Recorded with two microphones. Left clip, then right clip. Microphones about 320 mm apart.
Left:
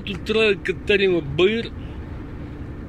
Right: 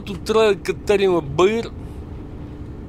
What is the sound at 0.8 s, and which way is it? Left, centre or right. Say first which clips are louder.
Speech: right 2 dB; right.